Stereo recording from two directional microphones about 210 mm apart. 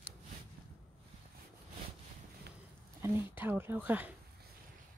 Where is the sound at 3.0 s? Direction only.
10° right (ahead or behind).